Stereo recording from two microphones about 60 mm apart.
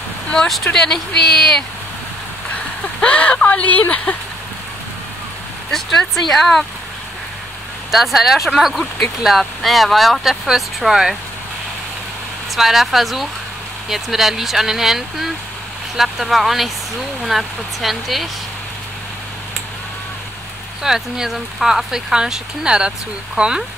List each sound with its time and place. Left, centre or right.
0.7 s speech: centre
3.0 s speech: left
5.7 s speech: centre
7.9 s speech: centre
12.5 s speech: centre
20.8 s speech: centre